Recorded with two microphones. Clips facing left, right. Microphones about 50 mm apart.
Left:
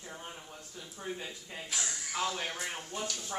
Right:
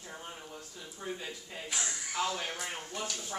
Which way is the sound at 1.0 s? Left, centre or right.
Centre.